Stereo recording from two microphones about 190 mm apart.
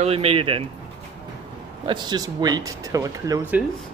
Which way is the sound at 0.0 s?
30° right (ahead or behind).